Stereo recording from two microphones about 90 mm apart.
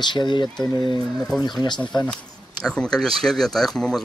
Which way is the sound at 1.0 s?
5° left (ahead or behind).